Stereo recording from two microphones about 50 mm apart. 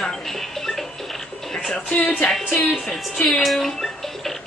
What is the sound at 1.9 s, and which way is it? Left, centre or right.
Speech, left.